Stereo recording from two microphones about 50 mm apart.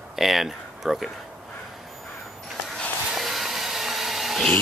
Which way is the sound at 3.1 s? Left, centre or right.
Centre.